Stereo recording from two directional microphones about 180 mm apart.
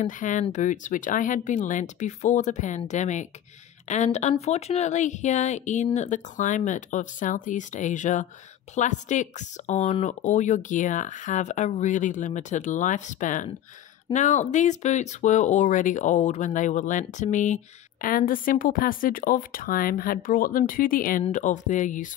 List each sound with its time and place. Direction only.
0.0 s speech: 45° left (ahead or behind)